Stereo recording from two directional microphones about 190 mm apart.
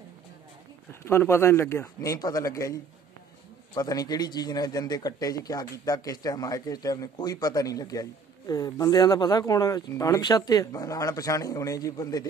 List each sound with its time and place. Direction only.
1.0 s a man's voice: 15° left (ahead or behind)